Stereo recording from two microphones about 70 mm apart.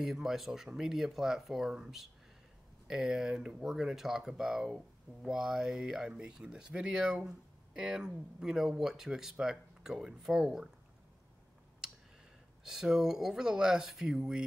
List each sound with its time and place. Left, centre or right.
0.0 s speech: centre
12.6 s speech: centre